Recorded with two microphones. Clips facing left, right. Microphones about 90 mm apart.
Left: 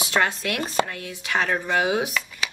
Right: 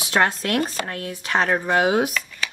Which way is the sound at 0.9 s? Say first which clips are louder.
Right 3 dB; 25° right (ahead or behind).